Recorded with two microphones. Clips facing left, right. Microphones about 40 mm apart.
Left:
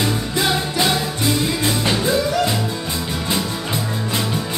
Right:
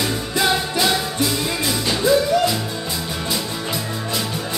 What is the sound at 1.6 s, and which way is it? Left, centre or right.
Music, left.